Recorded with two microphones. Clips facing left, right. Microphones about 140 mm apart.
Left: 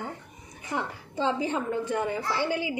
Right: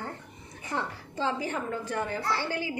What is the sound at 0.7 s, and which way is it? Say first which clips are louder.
A woman's voice: left 2 dB; 20° left (ahead or behind).